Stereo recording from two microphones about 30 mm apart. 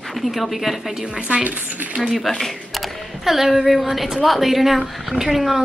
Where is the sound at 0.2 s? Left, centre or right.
Centre.